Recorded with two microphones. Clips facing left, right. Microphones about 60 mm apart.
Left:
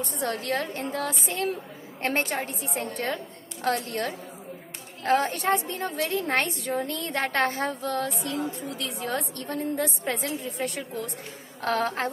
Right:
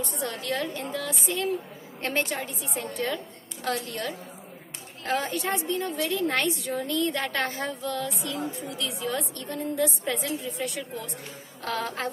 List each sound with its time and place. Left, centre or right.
0.2 s a woman's voice: left
11.6 s a woman's voice: left